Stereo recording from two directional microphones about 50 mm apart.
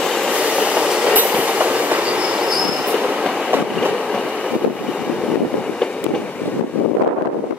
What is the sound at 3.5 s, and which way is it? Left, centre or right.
Train, right.